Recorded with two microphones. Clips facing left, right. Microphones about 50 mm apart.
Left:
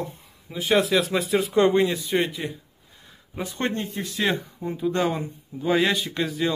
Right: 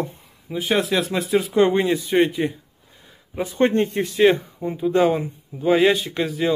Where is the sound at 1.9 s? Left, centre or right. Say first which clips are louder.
Right 6 dB; right.